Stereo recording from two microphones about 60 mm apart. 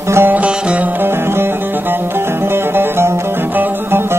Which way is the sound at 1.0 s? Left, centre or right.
Right.